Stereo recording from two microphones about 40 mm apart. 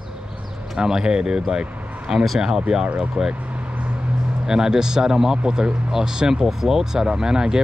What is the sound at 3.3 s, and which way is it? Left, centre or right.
Vehicle, right.